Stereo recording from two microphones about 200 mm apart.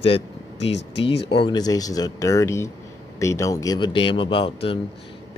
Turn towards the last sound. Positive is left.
turn(degrees=25)  # may be behind; listen again after turning